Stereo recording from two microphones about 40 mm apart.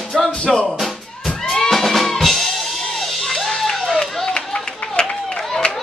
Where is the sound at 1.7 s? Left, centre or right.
Centre.